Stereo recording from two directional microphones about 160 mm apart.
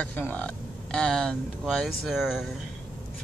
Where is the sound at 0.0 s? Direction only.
10° left (ahead or behind).